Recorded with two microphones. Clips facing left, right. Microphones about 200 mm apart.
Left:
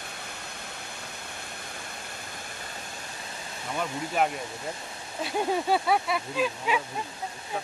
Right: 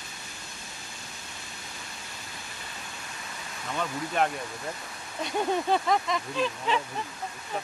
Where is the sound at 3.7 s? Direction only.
10° left (ahead or behind).